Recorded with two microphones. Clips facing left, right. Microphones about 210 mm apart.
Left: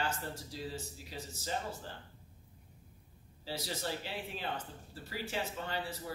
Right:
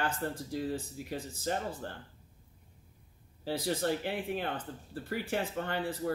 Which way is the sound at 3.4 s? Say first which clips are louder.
Right 8 dB; 55° right (ahead or behind).